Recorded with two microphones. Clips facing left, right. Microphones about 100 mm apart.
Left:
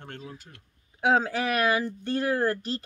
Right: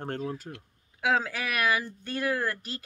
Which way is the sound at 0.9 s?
30° left (ahead or behind).